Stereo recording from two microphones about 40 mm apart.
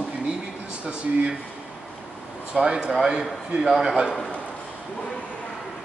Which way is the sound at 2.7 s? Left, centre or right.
Centre.